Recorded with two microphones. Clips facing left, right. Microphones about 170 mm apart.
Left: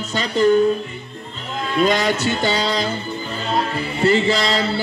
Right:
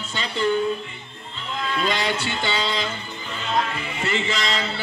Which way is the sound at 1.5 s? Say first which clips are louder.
Left 7 dB; 45° left (ahead or behind).